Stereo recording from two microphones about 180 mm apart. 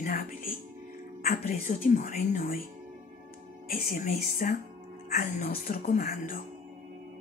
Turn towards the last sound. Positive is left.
turn(degrees=55)  # may be behind; listen again after turning